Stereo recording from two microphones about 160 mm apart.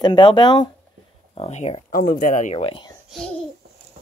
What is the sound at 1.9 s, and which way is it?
Speech, 60° left (ahead or behind).